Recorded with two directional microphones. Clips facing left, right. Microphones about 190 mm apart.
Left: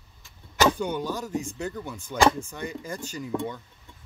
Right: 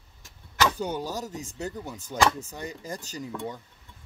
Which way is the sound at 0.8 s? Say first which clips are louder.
Left 2 dB; 35° right (ahead or behind).